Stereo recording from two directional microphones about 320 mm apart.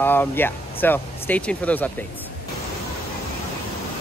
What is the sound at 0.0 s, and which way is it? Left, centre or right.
Speech, centre.